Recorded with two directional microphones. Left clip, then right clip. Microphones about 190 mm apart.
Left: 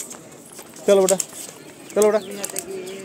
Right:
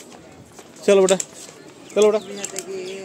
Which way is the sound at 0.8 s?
45° right (ahead or behind).